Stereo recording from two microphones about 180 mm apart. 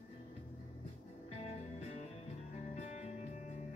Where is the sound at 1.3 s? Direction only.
35° left (ahead or behind).